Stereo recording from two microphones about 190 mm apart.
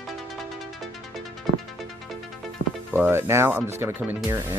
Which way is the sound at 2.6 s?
70° left (ahead or behind).